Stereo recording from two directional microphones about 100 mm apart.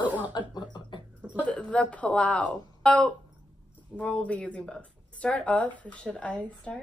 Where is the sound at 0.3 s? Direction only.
50° left (ahead or behind).